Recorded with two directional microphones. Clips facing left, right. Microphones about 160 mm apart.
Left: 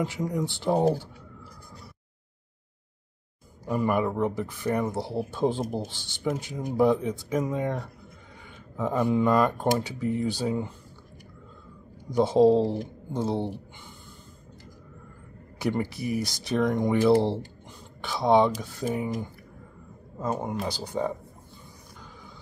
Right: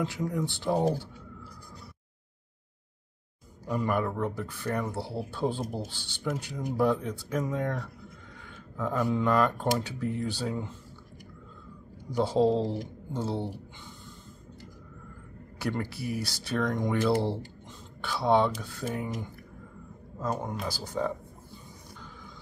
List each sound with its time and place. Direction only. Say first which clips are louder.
0.0 s speech: left 2 dB; 15° left (ahead or behind)
3.6 s speech: left 3 dB; 10° left (ahead or behind)
12.2 s speech: left 5 dB; 15° left (ahead or behind)
15.6 s speech: left 4 dB; 15° left (ahead or behind)
20.2 s speech: left 3 dB; 15° left (ahead or behind)